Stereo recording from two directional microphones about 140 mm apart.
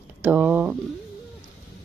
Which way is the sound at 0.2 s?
10° right (ahead or behind).